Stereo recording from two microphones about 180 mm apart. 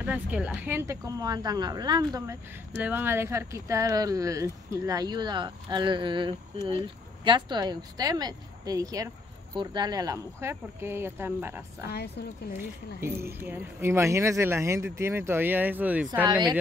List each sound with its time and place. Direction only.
0.0 s speech: 5° right (ahead or behind)
2.7 s speech: 10° right (ahead or behind)
11.9 s speech: 65° left (ahead or behind)
12.5 s speech: 10° right (ahead or behind)
16.3 s speech: 25° right (ahead or behind)